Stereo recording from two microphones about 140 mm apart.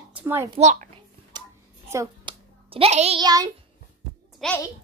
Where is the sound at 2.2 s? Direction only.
40° right (ahead or behind).